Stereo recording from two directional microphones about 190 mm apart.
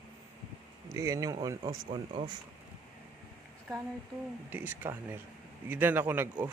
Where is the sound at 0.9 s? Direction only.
15° right (ahead or behind).